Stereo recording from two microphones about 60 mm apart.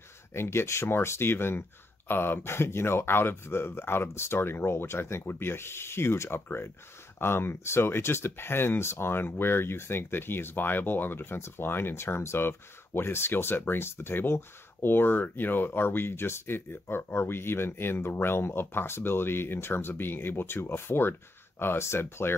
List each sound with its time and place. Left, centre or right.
0.3 s speech: left